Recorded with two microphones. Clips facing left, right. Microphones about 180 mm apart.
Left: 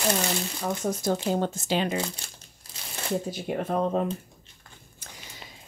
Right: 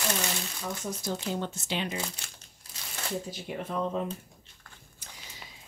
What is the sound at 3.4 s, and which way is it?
Speech, 55° left (ahead or behind).